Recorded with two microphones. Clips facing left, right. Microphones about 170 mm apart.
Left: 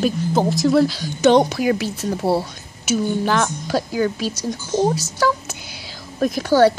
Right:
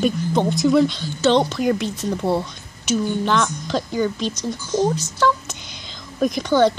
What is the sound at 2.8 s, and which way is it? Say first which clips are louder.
A woman's voice: left 1 dB; 5° left (ahead or behind).